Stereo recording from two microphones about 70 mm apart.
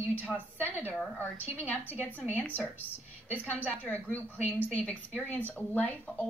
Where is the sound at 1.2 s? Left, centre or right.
Left.